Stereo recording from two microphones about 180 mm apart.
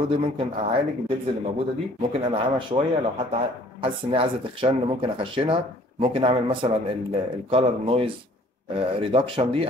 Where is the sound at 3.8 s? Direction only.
30° right (ahead or behind).